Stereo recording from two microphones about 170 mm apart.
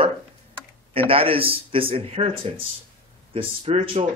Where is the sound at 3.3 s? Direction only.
30° right (ahead or behind).